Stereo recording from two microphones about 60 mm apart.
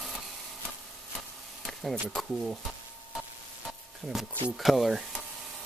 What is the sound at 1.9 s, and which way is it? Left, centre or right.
Speech, centre.